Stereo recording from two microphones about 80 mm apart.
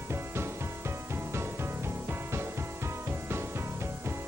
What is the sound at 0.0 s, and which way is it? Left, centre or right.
Music, right.